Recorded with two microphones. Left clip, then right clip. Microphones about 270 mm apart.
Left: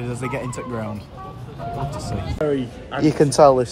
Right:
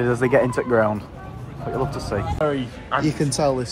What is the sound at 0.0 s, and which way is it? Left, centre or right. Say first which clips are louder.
Speech: right 8 dB; right.